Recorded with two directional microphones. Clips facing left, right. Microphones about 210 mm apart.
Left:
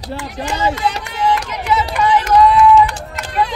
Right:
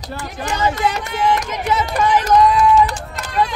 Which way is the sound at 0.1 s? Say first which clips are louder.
Left 2 dB; 30° left (ahead or behind).